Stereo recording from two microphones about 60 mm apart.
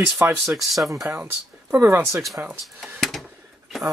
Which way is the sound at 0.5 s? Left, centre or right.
Centre.